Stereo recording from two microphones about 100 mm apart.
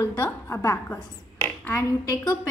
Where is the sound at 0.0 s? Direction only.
25° left (ahead or behind).